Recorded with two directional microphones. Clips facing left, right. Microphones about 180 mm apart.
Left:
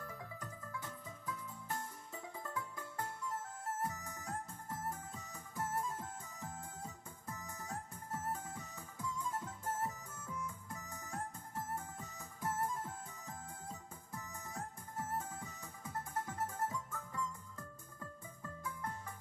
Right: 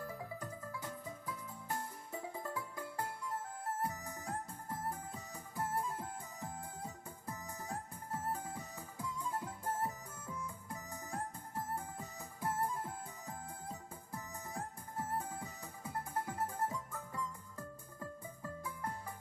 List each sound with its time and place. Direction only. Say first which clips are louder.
0.0 s music: right 4 dB; 30° right (ahead or behind)